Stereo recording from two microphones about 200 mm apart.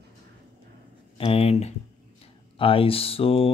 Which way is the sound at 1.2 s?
30° left (ahead or behind).